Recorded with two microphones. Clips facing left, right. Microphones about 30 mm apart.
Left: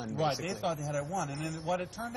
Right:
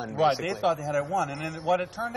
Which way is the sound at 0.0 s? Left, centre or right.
Right.